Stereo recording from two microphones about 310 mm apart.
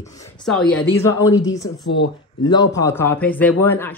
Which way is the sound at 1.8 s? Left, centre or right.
Left.